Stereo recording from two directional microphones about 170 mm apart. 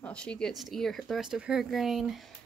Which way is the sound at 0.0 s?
5° left (ahead or behind).